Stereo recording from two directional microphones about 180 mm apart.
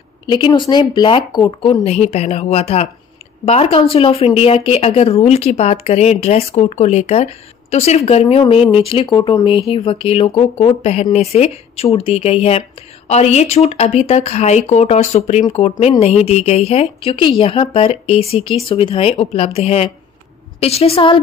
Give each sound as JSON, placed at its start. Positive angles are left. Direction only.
{"t": 0.3, "sound": "speech", "side_deg": 25}